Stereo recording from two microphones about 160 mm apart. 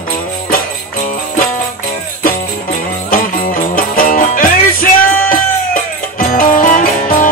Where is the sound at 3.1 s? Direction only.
60° left (ahead or behind).